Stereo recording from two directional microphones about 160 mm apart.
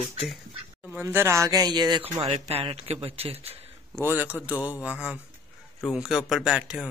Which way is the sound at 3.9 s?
10° right (ahead or behind).